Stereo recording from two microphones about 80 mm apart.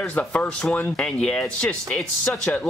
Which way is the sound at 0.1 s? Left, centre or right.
Centre.